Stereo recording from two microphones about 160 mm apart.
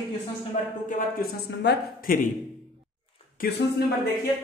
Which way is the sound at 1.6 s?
90° left.